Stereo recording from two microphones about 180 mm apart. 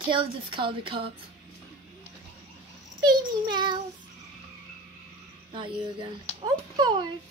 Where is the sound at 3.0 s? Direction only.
25° right (ahead or behind).